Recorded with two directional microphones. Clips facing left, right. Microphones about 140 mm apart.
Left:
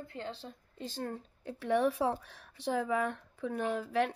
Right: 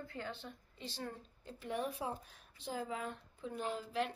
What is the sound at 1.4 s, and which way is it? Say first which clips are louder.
Speech: left 10 dB; 75° left (ahead or behind).